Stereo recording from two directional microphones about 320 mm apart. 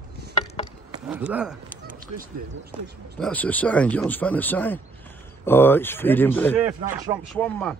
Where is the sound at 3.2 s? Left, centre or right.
Centre.